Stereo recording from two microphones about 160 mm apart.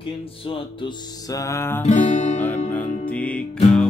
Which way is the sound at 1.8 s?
45° left (ahead or behind).